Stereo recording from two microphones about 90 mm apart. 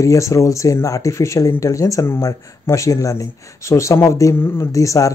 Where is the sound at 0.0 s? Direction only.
35° left (ahead or behind).